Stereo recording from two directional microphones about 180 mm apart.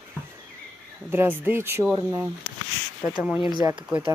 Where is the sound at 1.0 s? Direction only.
10° right (ahead or behind).